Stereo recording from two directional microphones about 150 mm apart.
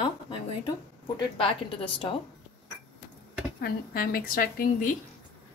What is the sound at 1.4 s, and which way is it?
Speech, 35° left (ahead or behind).